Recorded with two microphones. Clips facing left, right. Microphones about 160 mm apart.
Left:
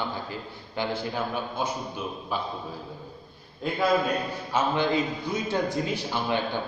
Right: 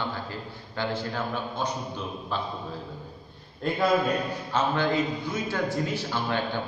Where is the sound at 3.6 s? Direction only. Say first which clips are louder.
Right 2 dB; centre (ahead or behind).